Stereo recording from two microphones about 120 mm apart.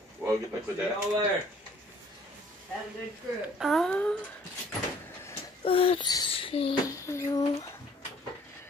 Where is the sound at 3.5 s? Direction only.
Centre (ahead or behind).